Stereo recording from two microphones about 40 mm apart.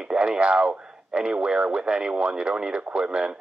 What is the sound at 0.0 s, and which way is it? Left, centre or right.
Speech, centre.